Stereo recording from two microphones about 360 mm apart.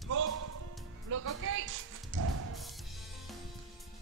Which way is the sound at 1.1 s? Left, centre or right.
Right.